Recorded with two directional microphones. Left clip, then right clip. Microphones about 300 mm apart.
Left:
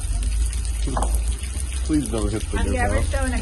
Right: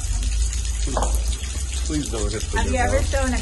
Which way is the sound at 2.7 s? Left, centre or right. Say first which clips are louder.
Right 3 dB; right.